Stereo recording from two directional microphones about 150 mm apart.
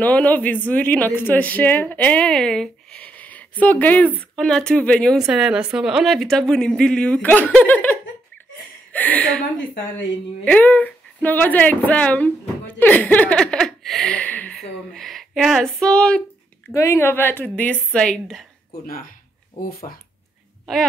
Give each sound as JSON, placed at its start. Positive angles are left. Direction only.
{"t": 0.0, "sound": "speech", "side_deg": 10}
{"t": 5.2, "sound": "speech", "side_deg": -5}
{"t": 10.4, "sound": "speech", "side_deg": 10}
{"t": 16.7, "sound": "speech", "side_deg": 20}
{"t": 19.9, "sound": "speech", "side_deg": 45}